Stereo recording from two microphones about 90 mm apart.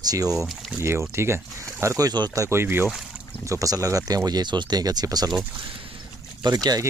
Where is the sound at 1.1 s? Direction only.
30° right (ahead or behind); by 2.3 s 50° right (ahead or behind).